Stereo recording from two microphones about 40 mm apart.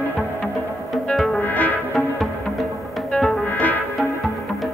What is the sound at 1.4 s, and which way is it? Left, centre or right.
Music, left.